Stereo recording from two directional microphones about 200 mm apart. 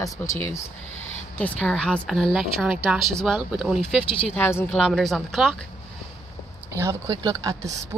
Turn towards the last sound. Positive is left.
turn(degrees=-15)  # may be behind; listen again after turning